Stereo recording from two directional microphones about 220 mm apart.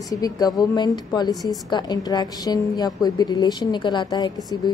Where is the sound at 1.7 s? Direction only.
20° left (ahead or behind).